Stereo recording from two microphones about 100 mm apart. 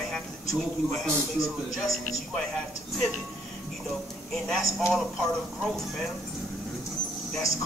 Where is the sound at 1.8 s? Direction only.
Centre (ahead or behind).